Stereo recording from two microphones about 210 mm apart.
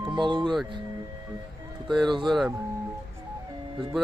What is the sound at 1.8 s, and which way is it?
Speech, centre (ahead or behind).